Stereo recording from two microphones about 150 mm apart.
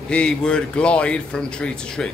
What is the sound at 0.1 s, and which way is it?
Speech, 5° left (ahead or behind).